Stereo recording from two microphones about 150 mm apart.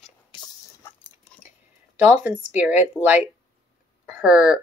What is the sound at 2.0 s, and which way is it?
Speech, 10° right (ahead or behind).